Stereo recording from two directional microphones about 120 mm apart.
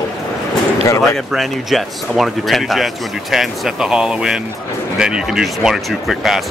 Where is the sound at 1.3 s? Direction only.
Centre (ahead or behind).